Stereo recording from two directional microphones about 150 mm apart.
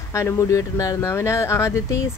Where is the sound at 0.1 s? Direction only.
20° left (ahead or behind).